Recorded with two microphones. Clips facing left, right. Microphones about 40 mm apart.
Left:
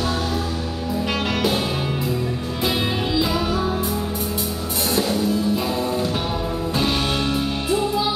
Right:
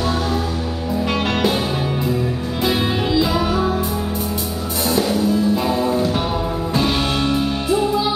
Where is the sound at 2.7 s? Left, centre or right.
Centre.